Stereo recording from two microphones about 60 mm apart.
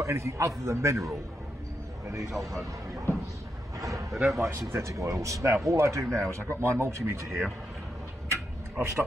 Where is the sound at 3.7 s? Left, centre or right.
Right.